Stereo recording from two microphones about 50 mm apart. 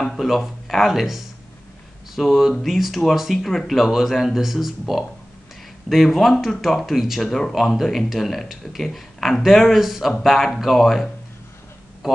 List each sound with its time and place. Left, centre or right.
0.2 s speech: centre